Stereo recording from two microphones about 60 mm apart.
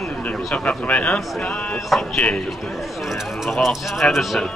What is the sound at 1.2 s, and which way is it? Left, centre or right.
Speech, centre.